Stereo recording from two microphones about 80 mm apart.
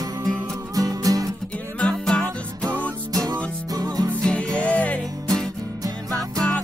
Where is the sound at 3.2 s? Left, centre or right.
Right.